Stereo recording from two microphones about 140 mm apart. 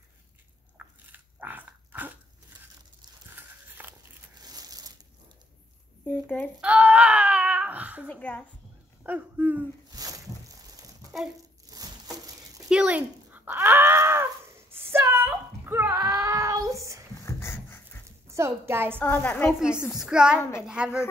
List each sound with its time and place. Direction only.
0.7 s dog: 10° right (ahead or behind)
3.3 s a sound: 15° right (ahead or behind)
4.4 s crumpling: 25° right (ahead or behind)
6.0 s a woman's voice: 10° left (ahead or behind)
6.6 s a sound: 10° right (ahead or behind)
8.1 s a woman's voice: 10° left (ahead or behind)
9.0 s speech: 10° right (ahead or behind)
9.9 s a sound: 25° right (ahead or behind)
11.7 s crushing: 25° right (ahead or behind)
12.6 s a sound: 5° right (ahead or behind); by 17.0 s 25° right (ahead or behind)
17.2 s dog: 15° left (ahead or behind)
18.3 s speech: 20° right (ahead or behind)
18.9 s a woman's voice: 10° left (ahead or behind)
19.9 s a woman's voice: 5° right (ahead or behind)